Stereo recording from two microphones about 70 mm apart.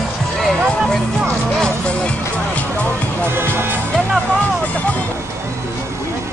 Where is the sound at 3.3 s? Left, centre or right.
Right.